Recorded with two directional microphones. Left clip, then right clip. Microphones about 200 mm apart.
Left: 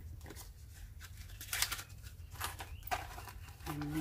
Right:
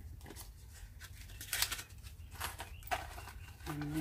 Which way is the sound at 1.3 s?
5° right (ahead or behind).